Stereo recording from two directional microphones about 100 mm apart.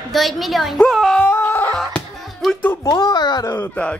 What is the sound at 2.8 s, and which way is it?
Speech, 40° left (ahead or behind).